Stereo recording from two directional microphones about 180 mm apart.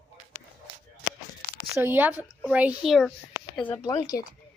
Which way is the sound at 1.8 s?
10° right (ahead or behind).